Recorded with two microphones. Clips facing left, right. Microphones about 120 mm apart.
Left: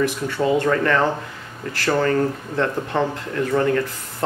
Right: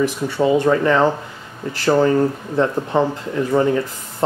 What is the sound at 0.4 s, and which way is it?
Speech, 15° right (ahead or behind).